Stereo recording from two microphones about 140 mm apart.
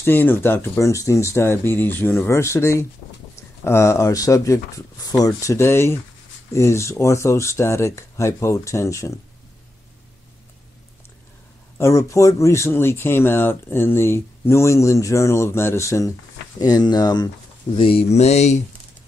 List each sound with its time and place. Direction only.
0.0 s speech: 15° left (ahead or behind)
11.8 s speech: 20° left (ahead or behind)
17.7 s speech: 40° left (ahead or behind)